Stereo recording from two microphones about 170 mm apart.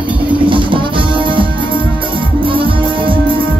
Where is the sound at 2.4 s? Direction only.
30° right (ahead or behind).